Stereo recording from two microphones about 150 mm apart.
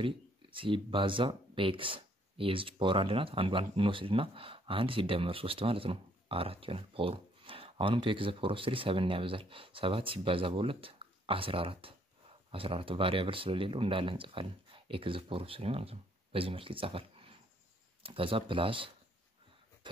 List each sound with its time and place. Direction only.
0.0 s speech: 35° right (ahead or behind)